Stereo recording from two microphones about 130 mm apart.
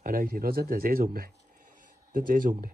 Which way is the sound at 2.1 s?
90° right.